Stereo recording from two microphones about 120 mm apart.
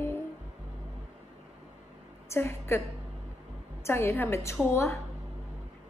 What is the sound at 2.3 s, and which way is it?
Speech, 20° left (ahead or behind).